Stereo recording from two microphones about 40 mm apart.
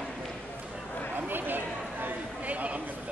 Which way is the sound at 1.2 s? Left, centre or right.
Right.